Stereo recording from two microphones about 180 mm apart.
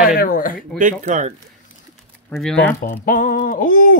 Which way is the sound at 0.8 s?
45° right (ahead or behind).